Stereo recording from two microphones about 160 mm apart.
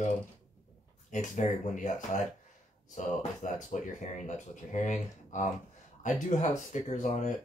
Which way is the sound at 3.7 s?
50° left (ahead or behind).